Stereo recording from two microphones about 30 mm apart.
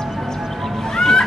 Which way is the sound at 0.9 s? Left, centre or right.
Left.